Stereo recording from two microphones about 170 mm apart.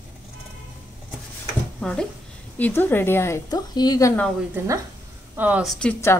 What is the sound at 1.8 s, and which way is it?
A woman's voice, 5° left (ahead or behind).